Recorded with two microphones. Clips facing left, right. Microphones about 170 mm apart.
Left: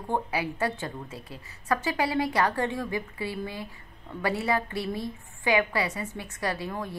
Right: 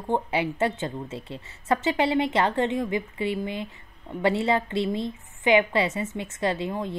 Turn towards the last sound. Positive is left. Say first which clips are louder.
# right 5 dB
turn(degrees=-20)  # may be behind; listen again after turning